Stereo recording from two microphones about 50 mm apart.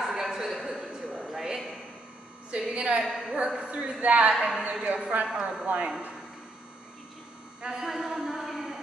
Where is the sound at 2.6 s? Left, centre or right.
Centre.